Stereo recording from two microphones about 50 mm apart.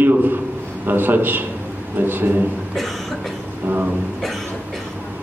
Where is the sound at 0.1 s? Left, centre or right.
Right.